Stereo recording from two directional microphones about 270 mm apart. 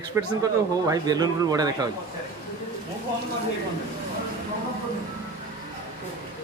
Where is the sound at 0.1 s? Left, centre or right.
Centre.